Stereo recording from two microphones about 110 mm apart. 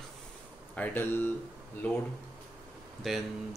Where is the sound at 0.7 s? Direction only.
15° left (ahead or behind).